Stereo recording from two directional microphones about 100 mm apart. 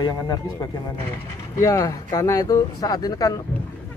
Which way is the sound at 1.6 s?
35° left (ahead or behind).